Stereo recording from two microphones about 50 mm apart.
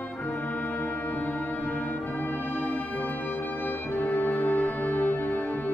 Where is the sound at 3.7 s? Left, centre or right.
Left.